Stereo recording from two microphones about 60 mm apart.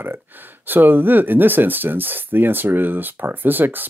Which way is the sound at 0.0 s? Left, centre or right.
Right.